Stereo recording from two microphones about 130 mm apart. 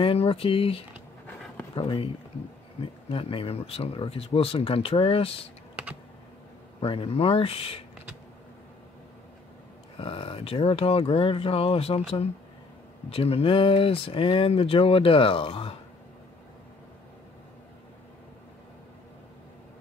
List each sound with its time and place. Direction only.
0.0 s speech: 45° left (ahead or behind)
3.1 s speech: 45° left (ahead or behind)
6.8 s speech: 45° left (ahead or behind)
9.9 s speech: 45° left (ahead or behind)
13.1 s speech: 45° left (ahead or behind)